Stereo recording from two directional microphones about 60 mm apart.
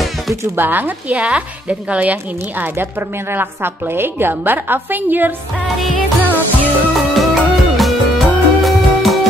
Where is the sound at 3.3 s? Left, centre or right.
Right.